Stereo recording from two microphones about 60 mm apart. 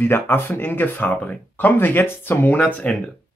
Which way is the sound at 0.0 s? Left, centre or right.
Left.